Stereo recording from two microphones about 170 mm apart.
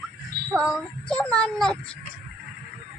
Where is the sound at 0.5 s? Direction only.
5° right (ahead or behind).